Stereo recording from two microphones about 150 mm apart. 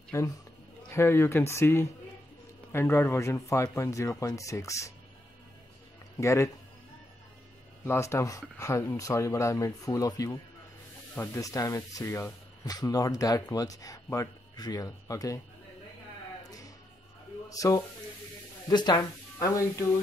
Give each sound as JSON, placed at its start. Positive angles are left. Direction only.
{"t": 0.1, "sound": "a man's voice", "side_deg": 20}
{"t": 6.1, "sound": "speech", "side_deg": 20}
{"t": 7.8, "sound": "speech", "side_deg": 15}
{"t": 16.4, "sound": "music", "side_deg": 25}
{"t": 17.5, "sound": "speech", "side_deg": 25}